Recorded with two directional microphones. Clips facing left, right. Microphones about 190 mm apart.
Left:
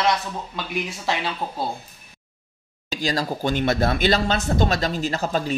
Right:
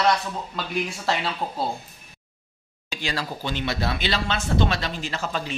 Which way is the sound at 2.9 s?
40° left (ahead or behind).